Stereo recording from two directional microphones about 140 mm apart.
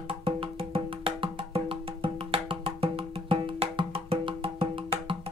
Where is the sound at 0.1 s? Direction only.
40° right (ahead or behind).